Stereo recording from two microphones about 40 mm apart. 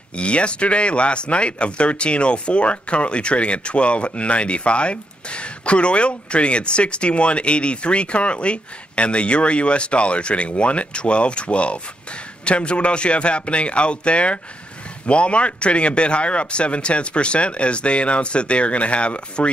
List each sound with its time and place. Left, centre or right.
0.2 s speech: left